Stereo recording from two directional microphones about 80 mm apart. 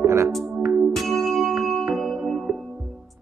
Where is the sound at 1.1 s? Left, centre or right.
Centre.